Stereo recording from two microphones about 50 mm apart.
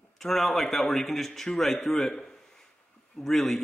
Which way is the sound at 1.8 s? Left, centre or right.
Centre.